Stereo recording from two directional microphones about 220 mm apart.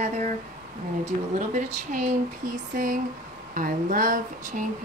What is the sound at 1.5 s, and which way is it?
Speech, 35° right (ahead or behind).